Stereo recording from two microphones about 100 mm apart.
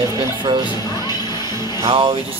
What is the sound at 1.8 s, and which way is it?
Music, 70° right (ahead or behind).